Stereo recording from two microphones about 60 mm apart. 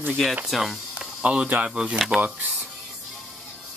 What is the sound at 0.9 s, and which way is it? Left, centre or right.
Speech, centre.